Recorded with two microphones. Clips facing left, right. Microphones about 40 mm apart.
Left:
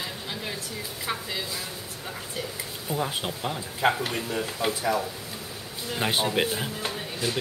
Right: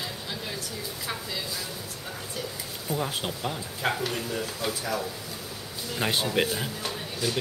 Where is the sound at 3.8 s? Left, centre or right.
Centre.